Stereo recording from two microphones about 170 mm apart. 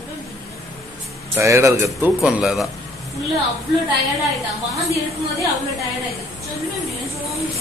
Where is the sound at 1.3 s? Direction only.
15° right (ahead or behind).